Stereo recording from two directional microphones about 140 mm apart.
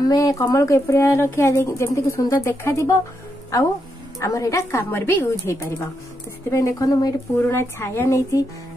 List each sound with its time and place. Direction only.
0.0 s speech: 25° left (ahead or behind)